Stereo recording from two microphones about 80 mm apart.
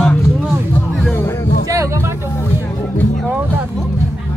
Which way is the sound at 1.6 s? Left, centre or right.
Right.